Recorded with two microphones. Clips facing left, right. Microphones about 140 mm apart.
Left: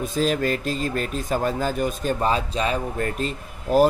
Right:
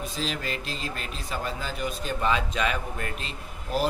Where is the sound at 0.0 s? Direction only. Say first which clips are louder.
Left 10 dB; 45° left (ahead or behind).